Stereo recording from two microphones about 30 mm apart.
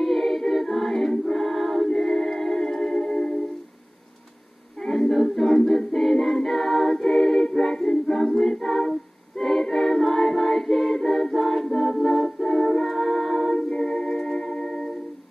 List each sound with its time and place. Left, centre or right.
0.0 s a capella: centre
1.2 s choir: centre
1.9 s music: centre
4.8 s a capella: centre
5.6 s a capella: centre
5.9 s a capella: centre
8.1 s a capella: centre
13.6 s music: left